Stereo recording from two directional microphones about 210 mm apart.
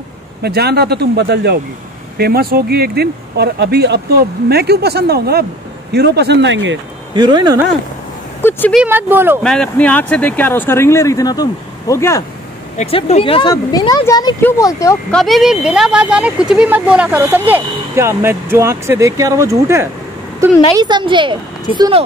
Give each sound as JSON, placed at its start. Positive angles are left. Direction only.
{"t": 0.4, "sound": "speech", "side_deg": -50}
{"t": 7.2, "sound": "a woman's voice", "side_deg": -20}
{"t": 8.4, "sound": "speech", "side_deg": 10}
{"t": 8.8, "sound": "speech", "side_deg": -10}
{"t": 9.4, "sound": "speech", "side_deg": 5}
{"t": 12.7, "sound": "speech", "side_deg": 30}
{"t": 15.1, "sound": "a woman's voice", "side_deg": 0}